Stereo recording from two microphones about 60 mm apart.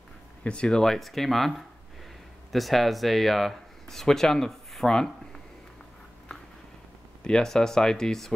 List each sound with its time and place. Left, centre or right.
0.4 s speech: centre
2.5 s speech: centre
7.2 s speech: centre